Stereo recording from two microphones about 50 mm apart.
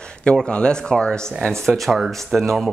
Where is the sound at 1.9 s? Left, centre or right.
Centre.